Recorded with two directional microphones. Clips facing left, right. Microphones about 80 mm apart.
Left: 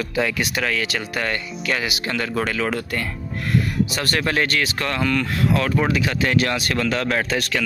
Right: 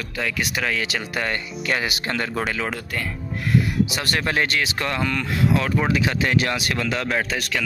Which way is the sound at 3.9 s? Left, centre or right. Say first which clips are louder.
Left 2 dB; centre.